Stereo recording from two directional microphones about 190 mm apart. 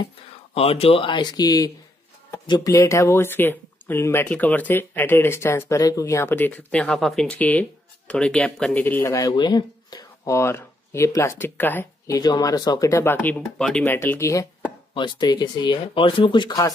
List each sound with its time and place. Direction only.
0.6 s speech: 30° left (ahead or behind); by 13.9 s 5° left (ahead or behind)
13.9 s speech: 15° left (ahead or behind)